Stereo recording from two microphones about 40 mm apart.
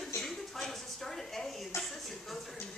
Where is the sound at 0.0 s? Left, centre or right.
Centre.